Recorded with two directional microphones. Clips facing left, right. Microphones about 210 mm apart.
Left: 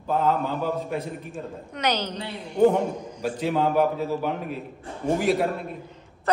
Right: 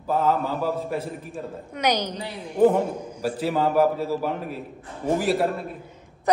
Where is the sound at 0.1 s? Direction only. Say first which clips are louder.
Right 1 dB; 5° right (ahead or behind).